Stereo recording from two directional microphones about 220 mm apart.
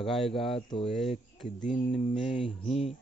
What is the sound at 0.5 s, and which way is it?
Speech, 25° left (ahead or behind).